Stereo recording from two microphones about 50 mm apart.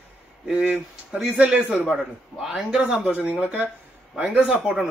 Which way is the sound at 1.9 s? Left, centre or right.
Centre.